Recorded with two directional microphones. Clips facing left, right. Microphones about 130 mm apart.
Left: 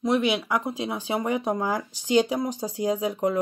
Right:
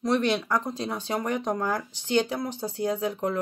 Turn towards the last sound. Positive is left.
turn(degrees=10)  # may be behind; listen again after turning